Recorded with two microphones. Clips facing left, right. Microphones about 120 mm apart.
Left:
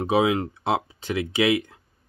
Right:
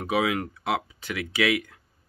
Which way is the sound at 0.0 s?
25° left (ahead or behind).